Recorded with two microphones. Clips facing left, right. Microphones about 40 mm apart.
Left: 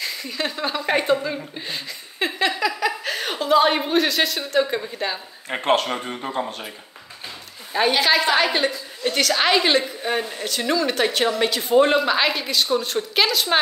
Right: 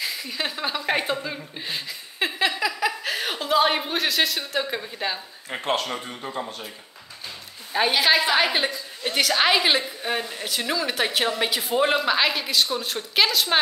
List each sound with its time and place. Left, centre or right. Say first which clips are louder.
0.0 s speech: left 2 dB; centre
5.6 s speech: left 5 dB; left
7.7 s a woman's voice: left 2 dB; centre